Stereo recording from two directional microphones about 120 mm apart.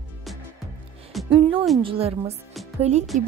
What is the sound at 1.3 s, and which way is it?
A woman's voice, 45° right (ahead or behind).